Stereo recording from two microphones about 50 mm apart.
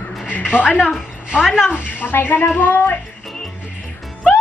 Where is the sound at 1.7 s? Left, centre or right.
Left.